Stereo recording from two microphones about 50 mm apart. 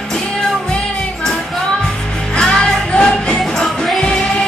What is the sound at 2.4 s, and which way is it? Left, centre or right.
Music, centre.